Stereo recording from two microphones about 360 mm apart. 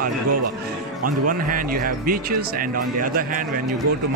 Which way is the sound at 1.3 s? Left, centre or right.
Right.